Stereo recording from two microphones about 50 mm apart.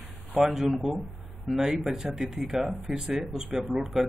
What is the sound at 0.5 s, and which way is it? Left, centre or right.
Speech, centre.